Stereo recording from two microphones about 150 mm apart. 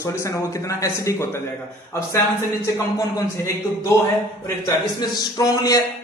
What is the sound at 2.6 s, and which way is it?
Speech, 25° left (ahead or behind).